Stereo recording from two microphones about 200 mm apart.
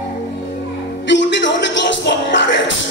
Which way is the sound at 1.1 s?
65° left (ahead or behind).